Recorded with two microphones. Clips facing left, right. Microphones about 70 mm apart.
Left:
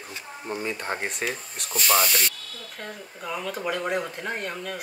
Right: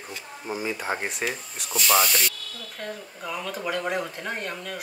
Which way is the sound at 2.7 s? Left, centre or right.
Centre.